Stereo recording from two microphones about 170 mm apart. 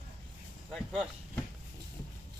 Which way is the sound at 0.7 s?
Centre (ahead or behind).